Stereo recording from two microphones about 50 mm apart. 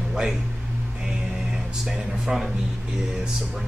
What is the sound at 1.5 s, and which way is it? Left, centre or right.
Speech, centre.